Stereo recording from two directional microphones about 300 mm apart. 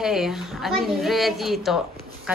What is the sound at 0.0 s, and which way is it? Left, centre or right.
A woman's voice, centre.